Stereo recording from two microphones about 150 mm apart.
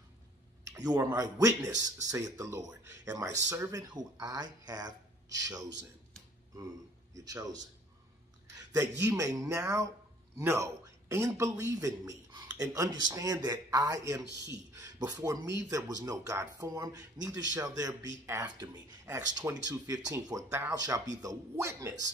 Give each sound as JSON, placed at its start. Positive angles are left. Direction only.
{"t": 0.7, "sound": "a sound", "side_deg": -25}
{"t": 1.1, "sound": "a man's voice", "side_deg": -25}
{"t": 7.2, "sound": "a man's voice", "side_deg": -25}
{"t": 8.7, "sound": "a man's voice", "side_deg": -20}